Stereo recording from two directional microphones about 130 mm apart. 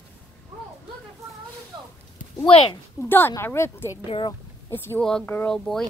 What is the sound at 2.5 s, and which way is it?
Speech, 45° left (ahead or behind).